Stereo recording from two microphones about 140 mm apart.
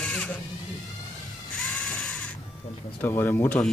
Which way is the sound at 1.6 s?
Centre (ahead or behind).